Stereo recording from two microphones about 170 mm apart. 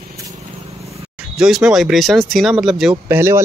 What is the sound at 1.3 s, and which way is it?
Speech, 5° right (ahead or behind).